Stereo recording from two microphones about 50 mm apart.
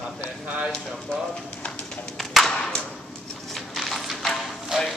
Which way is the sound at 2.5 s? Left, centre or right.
Centre.